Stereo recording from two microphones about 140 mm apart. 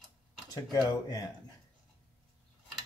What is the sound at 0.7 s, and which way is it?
Speech, 30° left (ahead or behind).